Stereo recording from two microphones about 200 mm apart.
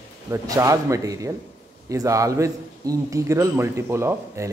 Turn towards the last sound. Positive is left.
turn(degrees=-15)  # may be behind; listen again after turning